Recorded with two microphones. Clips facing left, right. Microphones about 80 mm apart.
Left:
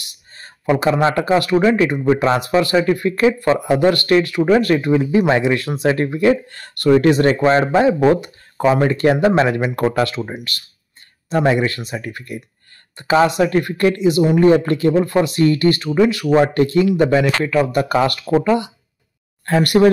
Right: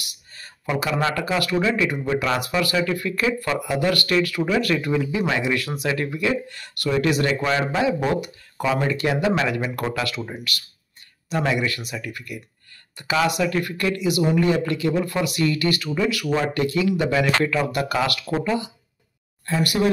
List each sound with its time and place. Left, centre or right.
0.1 s a sound: left
1.1 s speech: left
9.8 s speech: left
10.5 s speech: left
17.7 s speech: left
19.4 s speech: left